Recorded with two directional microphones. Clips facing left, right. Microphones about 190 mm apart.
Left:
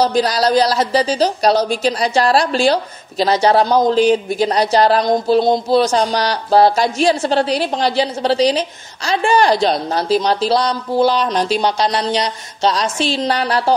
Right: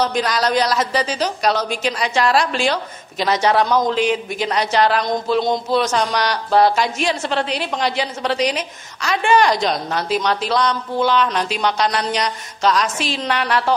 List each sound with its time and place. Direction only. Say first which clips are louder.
0.0 s a woman's voice: left 4 dB; 35° left (ahead or behind)